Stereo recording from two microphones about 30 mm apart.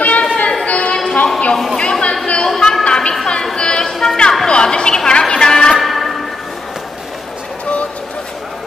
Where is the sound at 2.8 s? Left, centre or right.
Left.